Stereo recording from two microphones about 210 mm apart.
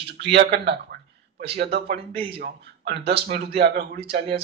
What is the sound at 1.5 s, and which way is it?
A man's voice, 50° right (ahead or behind).